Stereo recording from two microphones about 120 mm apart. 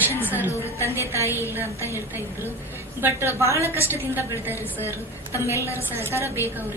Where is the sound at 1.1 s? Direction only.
25° left (ahead or behind).